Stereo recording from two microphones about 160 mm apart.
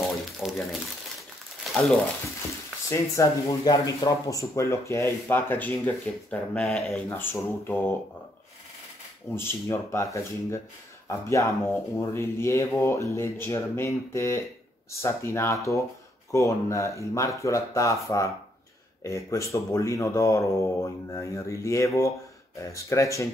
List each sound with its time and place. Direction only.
0.0 s a sound: centre (ahead or behind)
2.9 s speech: 20° left (ahead or behind)
6.3 s speech: 5° left (ahead or behind)
7.1 s speech: 15° left (ahead or behind)
9.3 s speech: 15° left (ahead or behind)